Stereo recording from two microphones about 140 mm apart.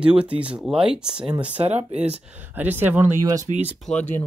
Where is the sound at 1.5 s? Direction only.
50° right (ahead or behind).